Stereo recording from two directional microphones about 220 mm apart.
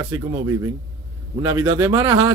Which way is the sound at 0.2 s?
20° right (ahead or behind).